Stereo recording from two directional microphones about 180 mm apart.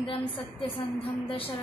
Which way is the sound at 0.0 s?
30° left (ahead or behind).